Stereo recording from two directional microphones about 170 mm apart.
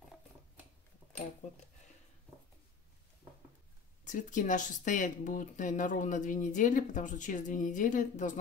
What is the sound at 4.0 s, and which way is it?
Speech, 50° left (ahead or behind).